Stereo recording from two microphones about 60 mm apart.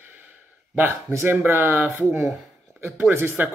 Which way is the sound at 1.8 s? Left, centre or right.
Centre.